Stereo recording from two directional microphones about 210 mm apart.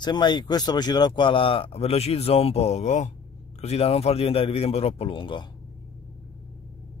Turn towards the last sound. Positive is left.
turn(degrees=25)  # may be behind; listen again after turning